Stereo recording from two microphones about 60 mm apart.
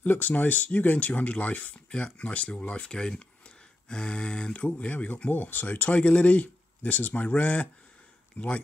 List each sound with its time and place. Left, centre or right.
0.0 s speech: left